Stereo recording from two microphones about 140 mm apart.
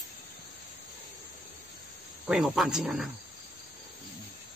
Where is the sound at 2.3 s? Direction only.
5° right (ahead or behind).